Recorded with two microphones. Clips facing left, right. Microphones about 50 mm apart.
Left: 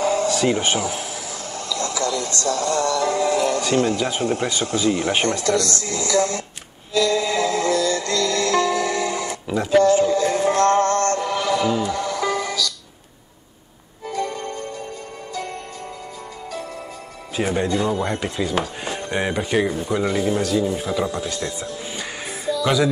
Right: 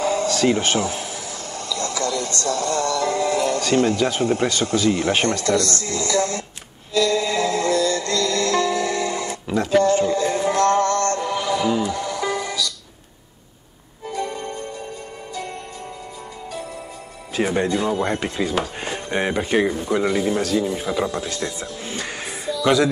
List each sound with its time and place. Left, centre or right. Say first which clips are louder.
0.0 s a sound: even; left
0.5 s speech: right 1 dB; centre
2.0 s speech: even; left
5.4 s speech: even; right
5.8 s music: left 1 dB; left
9.5 s speech: left 1 dB; centre
10.0 s speech: left 1 dB; right
10.3 s music: even; left
12.1 s music: left 1 dB; right
14.1 s music: left 1 dB; right
17.5 s speech: left 1 dB; right
22.5 s music: right 1 dB; centre